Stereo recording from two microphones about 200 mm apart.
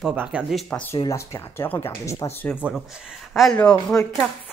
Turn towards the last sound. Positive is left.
turn(degrees=5)  # may be behind; listen again after turning